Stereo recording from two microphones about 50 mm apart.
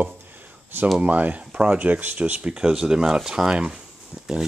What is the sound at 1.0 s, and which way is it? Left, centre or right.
Speech, right.